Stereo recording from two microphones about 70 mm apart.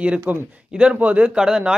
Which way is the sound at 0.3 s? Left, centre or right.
Right.